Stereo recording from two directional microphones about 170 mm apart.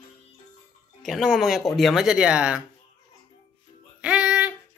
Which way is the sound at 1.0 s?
Centre (ahead or behind).